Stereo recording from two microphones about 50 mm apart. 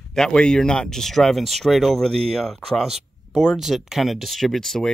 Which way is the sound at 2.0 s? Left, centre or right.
Centre.